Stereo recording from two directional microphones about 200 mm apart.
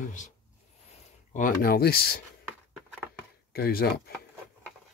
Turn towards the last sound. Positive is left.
turn(degrees=50)  # may be behind; listen again after turning